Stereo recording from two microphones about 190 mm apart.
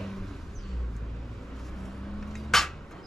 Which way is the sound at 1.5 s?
Centre (ahead or behind).